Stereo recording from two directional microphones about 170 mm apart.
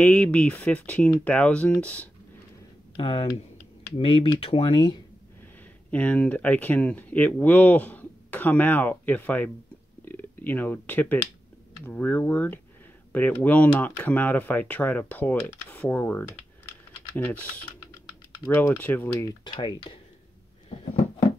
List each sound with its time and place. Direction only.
0.0 s speech: 5° left (ahead or behind)
3.0 s speech: 30° left (ahead or behind)
5.9 s speech: 10° left (ahead or behind)
19.4 s speech: 30° left (ahead or behind)